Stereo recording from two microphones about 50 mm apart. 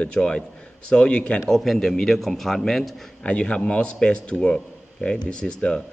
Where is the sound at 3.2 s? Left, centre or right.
Left.